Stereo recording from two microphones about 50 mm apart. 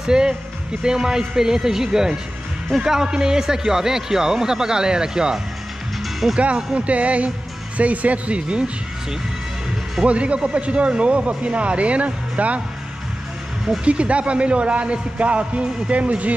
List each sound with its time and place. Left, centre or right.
0.0 s a man's voice: centre
6.4 s speech: right
10.0 s speech: right
13.8 s speech: right